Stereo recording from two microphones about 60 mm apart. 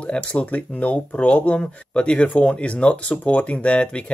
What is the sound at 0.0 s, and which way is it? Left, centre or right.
Speech, centre.